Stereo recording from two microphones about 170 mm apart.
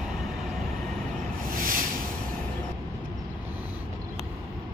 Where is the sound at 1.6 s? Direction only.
55° right (ahead or behind).